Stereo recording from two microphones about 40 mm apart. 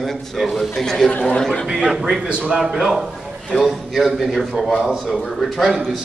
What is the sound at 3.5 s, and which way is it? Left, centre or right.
A man's voice, centre.